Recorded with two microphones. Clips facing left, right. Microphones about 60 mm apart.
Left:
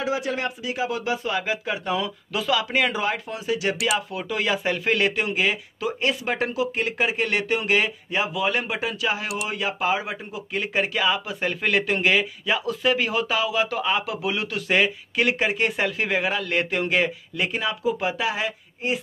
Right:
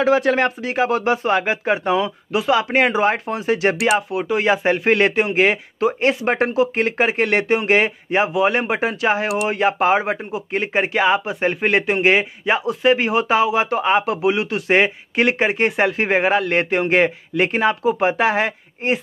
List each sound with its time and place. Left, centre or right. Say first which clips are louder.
0.0 s speech: right 10 dB; right
4.1 s speech: right 7 dB; right